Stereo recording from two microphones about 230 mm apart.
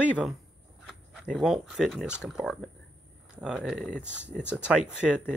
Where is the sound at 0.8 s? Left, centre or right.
Centre.